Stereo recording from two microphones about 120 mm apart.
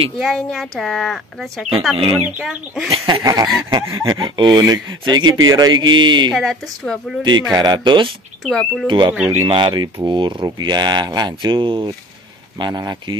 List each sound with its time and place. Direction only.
0.2 s speech: centre (ahead or behind)
3.3 s speech: 30° right (ahead or behind)
4.2 s speech: 40° right (ahead or behind)
6.3 s speech: centre (ahead or behind)
7.5 s speech: 35° right (ahead or behind)
8.5 s speech: 5° left (ahead or behind)
8.8 s speech: 40° right (ahead or behind)
9.1 s speech: 15° right (ahead or behind)
9.4 s speech: 40° right (ahead or behind)